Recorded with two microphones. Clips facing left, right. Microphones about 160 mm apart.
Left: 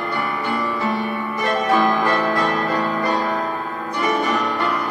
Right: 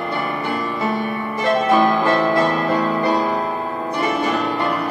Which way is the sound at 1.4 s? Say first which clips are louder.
Right 3 dB; 30° right (ahead or behind).